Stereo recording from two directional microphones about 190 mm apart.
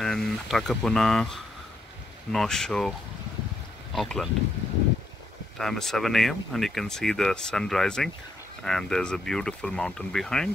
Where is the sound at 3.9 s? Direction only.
Centre (ahead or behind).